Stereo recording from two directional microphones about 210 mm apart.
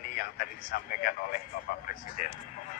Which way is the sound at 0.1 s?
40° left (ahead or behind).